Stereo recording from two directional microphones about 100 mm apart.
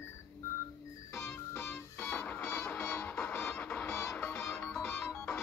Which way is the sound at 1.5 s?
25° left (ahead or behind).